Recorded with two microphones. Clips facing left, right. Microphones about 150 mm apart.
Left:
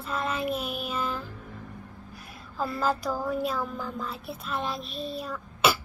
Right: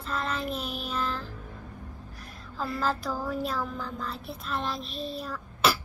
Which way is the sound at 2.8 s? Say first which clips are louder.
Left 3 dB; centre (ahead or behind).